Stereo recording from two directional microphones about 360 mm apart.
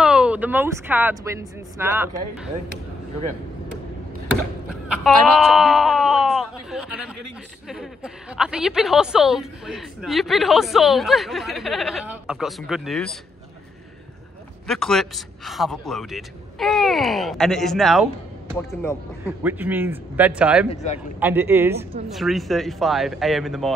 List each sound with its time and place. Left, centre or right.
0.0 s speech: centre
5.0 s a sound: centre
7.6 s a woman's voice: centre
14.7 s a woman's voice: centre
19.2 s a woman's voice: centre
20.7 s a man's voice: centre
21.2 s a woman's voice: centre